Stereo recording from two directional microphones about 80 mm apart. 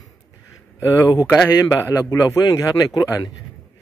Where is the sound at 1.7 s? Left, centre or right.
Left.